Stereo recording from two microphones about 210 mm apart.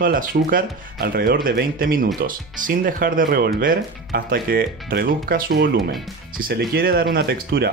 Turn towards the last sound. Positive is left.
turn(degrees=-50)  # may be behind; listen again after turning